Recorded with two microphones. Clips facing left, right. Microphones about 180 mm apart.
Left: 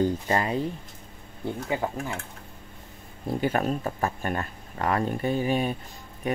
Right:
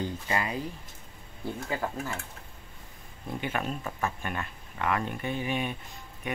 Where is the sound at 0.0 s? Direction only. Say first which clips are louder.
Left 7 dB; 40° left (ahead or behind).